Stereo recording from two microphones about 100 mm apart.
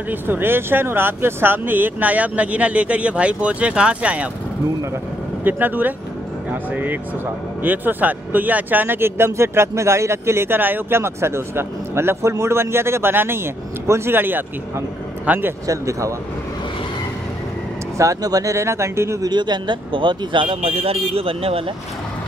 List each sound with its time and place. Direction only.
0.1 s speech: 20° right (ahead or behind)
5.4 s speech: 20° right (ahead or behind)
15.6 s speech: 35° right (ahead or behind)
17.9 s speech: 35° right (ahead or behind)
19.2 s speech: 45° right (ahead or behind); by 21.6 s 70° right (ahead or behind)